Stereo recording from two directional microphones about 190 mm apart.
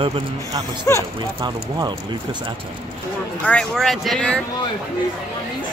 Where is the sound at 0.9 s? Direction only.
15° left (ahead or behind).